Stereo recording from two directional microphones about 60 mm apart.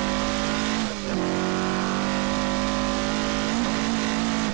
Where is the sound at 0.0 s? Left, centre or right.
Right.